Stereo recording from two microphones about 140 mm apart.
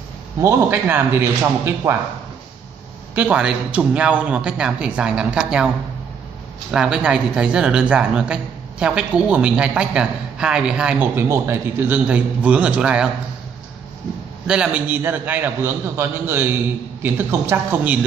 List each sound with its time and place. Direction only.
0.4 s speech: 15° right (ahead or behind)
3.2 s speech: 5° right (ahead or behind)
6.7 s speech: 5° right (ahead or behind)
14.5 s speech: 10° right (ahead or behind)